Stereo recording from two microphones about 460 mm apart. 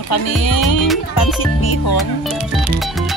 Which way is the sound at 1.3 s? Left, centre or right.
Left.